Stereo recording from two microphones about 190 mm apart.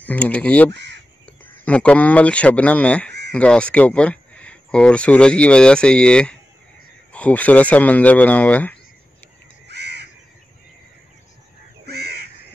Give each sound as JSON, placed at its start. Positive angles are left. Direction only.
{"t": 0.0, "sound": "a man's voice", "side_deg": 10}
{"t": 0.7, "sound": "speech", "side_deg": -65}
{"t": 1.6, "sound": "a man's voice", "side_deg": 5}
{"t": 9.7, "sound": "crow", "side_deg": -60}
{"t": 11.8, "sound": "crow", "side_deg": -60}